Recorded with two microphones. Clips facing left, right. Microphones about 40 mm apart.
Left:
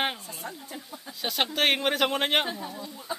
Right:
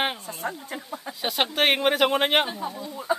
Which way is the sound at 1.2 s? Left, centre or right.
Centre.